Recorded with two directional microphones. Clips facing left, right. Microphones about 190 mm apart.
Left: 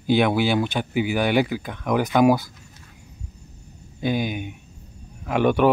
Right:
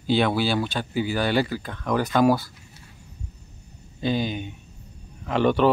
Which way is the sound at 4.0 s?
15° left (ahead or behind).